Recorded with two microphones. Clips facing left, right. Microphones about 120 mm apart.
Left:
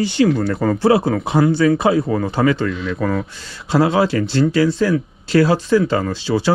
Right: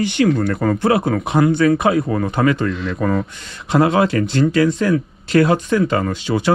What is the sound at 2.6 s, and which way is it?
Speech, centre (ahead or behind).